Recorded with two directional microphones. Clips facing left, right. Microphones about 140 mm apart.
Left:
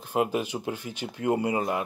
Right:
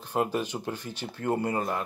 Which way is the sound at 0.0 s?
10° left (ahead or behind).